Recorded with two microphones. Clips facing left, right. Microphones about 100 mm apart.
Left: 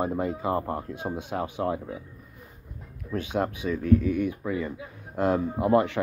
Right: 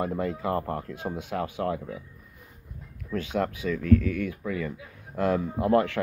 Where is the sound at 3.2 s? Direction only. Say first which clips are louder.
Even; 20° left (ahead or behind).